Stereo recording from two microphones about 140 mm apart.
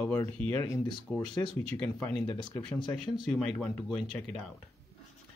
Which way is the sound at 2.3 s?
35° left (ahead or behind).